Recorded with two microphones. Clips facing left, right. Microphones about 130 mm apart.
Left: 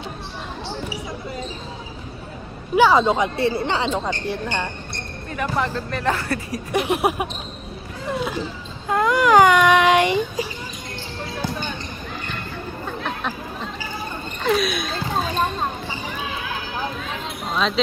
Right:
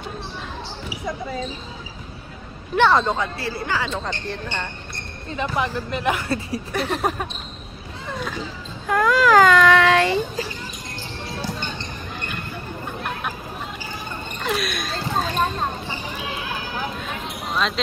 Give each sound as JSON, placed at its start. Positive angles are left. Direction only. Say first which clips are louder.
{"t": 2.7, "sound": "speech", "louder": "left 2 dB", "side_deg": 5}
{"t": 3.2, "sound": "a woman's voice", "louder": "left 6 dB", "side_deg": 25}
{"t": 3.9, "sound": "a woman's voice", "louder": "left 4 dB", "side_deg": 10}
{"t": 5.3, "sound": "speech", "louder": "even", "side_deg": -20}
{"t": 6.7, "sound": "a woman's voice", "louder": "left 4 dB", "side_deg": 15}
{"t": 8.8, "sound": "speech", "louder": "even", "side_deg": 20}
{"t": 12.8, "sound": "a sound", "louder": "left 2 dB", "side_deg": -10}
{"t": 14.4, "sound": "a sound", "louder": "left 5 dB", "side_deg": 0}